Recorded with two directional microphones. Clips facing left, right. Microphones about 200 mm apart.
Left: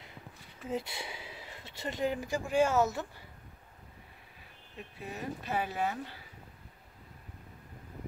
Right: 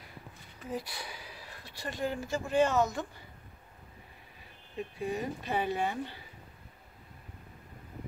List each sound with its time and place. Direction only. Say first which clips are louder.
0.7 s speech: left 2 dB; 25° left (ahead or behind); by 3.1 s 5° left (ahead or behind)
5.0 s speech: right 4 dB; 5° left (ahead or behind)